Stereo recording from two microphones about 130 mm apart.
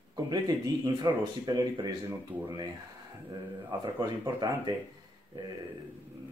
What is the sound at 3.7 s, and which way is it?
Speech, 25° right (ahead or behind).